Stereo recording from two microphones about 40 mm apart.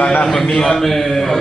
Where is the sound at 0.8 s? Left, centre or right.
Centre.